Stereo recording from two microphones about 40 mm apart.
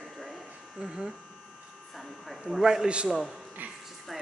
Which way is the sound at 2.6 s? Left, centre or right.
Centre.